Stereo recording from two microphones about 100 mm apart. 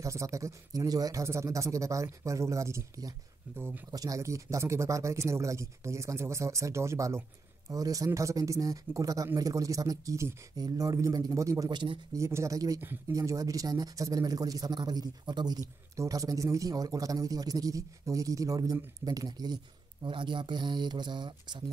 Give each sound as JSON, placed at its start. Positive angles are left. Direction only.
{"t": 0.0, "sound": "speech", "side_deg": -30}
{"t": 3.9, "sound": "speech", "side_deg": -35}
{"t": 11.7, "sound": "speech", "side_deg": -55}
{"t": 12.1, "sound": "speech", "side_deg": -30}